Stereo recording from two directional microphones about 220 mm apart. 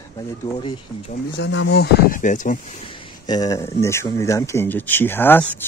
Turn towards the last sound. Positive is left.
turn(degrees=10)  # may be behind; listen again after turning